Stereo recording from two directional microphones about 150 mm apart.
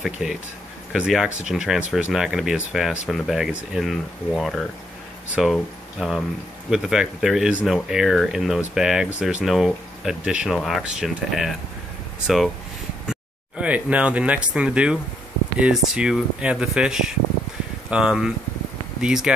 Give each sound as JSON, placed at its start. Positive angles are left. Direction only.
{"t": 0.0, "sound": "speech", "side_deg": -5}
{"t": 13.0, "sound": "speech", "side_deg": -5}